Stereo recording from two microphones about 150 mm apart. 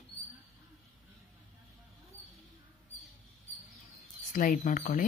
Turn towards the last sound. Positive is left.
turn(degrees=55)  # may be behind; listen again after turning